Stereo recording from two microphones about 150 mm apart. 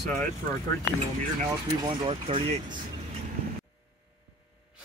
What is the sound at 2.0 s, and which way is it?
Speech, 40° right (ahead or behind).